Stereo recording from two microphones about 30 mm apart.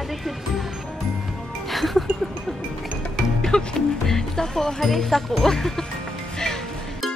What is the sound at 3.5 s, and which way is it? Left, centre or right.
Speech, left.